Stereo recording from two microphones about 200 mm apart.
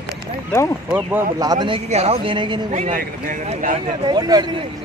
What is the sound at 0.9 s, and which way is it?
Speech, 10° right (ahead or behind).